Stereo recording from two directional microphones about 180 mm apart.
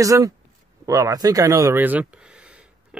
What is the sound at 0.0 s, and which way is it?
Speech, 20° right (ahead or behind).